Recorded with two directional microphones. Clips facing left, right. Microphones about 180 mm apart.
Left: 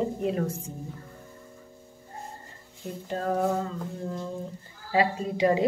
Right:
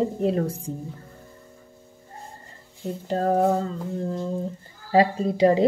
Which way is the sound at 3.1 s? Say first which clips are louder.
Right 6 dB; 40° right (ahead or behind).